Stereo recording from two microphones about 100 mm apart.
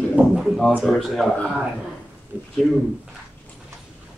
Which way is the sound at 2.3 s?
20° right (ahead or behind).